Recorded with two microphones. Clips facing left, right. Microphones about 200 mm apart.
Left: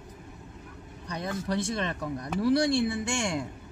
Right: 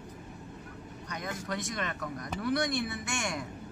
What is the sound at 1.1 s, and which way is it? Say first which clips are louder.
Speech: left 6 dB; 30° left (ahead or behind).